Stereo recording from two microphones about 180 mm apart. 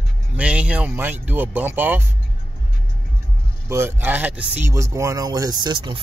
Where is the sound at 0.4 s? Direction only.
5° right (ahead or behind).